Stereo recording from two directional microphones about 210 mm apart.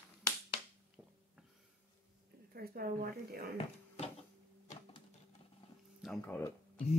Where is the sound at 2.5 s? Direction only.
45° right (ahead or behind).